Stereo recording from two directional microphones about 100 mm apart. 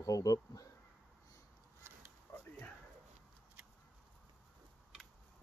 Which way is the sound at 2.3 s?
30° left (ahead or behind).